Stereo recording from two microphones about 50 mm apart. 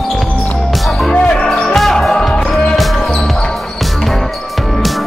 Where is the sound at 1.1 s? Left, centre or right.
Left.